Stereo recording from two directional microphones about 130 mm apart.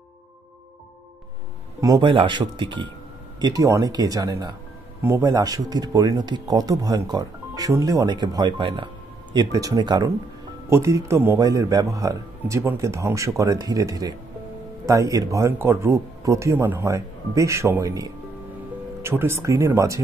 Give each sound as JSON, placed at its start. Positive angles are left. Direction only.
{"t": 1.8, "sound": "speech", "side_deg": -25}
{"t": 2.0, "sound": "speech", "side_deg": -40}